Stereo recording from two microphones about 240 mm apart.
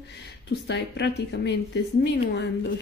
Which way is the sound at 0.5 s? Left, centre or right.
Left.